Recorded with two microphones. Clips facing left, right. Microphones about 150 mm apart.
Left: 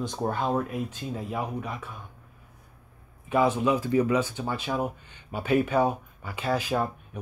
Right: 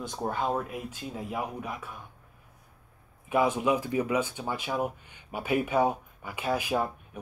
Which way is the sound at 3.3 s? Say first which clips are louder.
Left 2 dB; 10° right (ahead or behind).